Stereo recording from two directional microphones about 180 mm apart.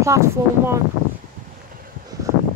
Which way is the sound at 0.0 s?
15° right (ahead or behind).